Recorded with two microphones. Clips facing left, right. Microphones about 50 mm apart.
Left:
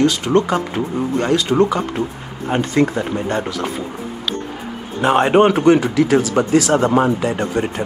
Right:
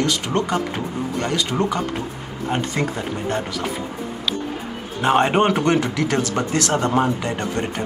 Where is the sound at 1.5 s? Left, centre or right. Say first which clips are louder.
Left 6 dB; centre.